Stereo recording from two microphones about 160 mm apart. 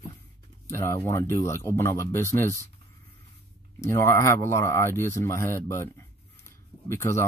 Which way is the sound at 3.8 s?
15° left (ahead or behind).